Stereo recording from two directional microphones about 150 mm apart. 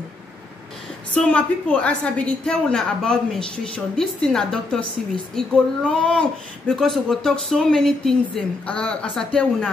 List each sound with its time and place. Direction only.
1.1 s a woman's voice: 10° left (ahead or behind)